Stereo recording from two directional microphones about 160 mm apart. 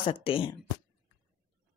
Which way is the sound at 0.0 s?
35° left (ahead or behind).